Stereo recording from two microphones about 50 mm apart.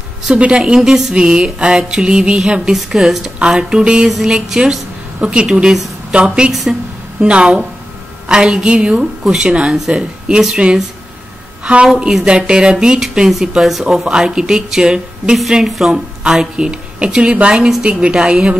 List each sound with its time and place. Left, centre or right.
0.6 s speech: centre
1.1 s speech: centre
3.3 s a woman's voice: centre
6.5 s speech: centre
7.2 s a woman's voice: right
9.2 s speech: centre
9.5 s a woman's voice: right
11.6 s a woman's voice: centre